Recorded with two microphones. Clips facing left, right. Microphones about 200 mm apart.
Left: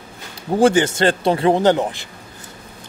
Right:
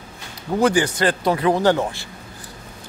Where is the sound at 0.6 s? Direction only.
25° left (ahead or behind).